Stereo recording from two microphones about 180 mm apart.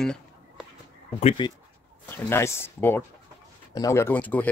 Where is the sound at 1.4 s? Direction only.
25° left (ahead or behind).